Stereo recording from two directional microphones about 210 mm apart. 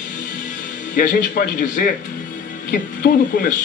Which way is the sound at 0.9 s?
40° left (ahead or behind).